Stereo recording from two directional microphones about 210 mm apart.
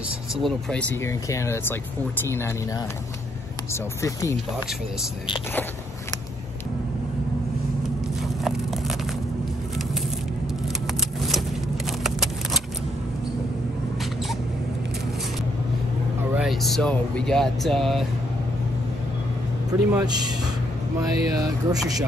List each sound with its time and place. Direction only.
0.4 s speech: 5° left (ahead or behind)
1.0 s speech: 15° left (ahead or behind)
4.0 s speech: 15° left (ahead or behind)
8.2 s a sound: centre (ahead or behind)
11.0 s vehicle: centre (ahead or behind)
16.3 s speech: centre (ahead or behind)
19.9 s speech: 15° right (ahead or behind)